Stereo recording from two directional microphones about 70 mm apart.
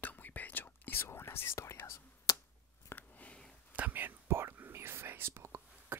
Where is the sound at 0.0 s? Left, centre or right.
Left.